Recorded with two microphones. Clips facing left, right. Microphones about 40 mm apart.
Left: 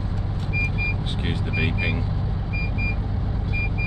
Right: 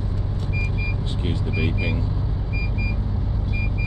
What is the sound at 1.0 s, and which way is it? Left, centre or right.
Speech, left.